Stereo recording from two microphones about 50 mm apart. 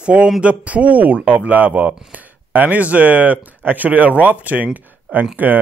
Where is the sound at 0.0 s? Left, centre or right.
Right.